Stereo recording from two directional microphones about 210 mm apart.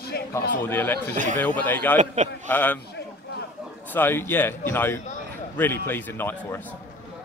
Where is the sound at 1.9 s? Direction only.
35° right (ahead or behind).